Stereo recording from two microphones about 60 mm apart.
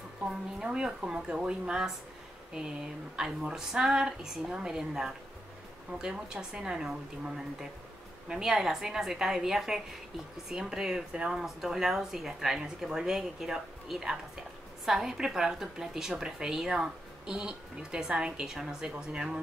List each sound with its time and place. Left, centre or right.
0.3 s a woman's voice: centre
3.2 s a woman's voice: centre